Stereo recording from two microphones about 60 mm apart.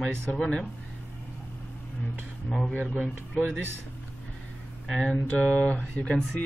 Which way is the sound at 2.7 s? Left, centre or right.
Left.